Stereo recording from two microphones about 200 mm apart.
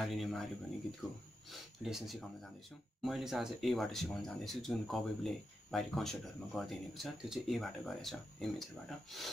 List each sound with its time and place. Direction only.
0.0 s speech: centre (ahead or behind)